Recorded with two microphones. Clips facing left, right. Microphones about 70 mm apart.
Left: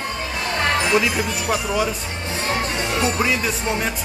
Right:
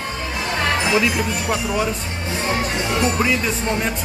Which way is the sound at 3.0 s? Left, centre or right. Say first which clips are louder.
Right 1 dB; centre.